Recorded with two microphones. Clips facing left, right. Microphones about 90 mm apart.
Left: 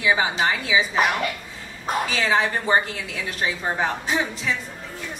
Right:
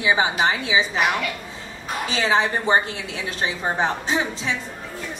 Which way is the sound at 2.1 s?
20° right (ahead or behind).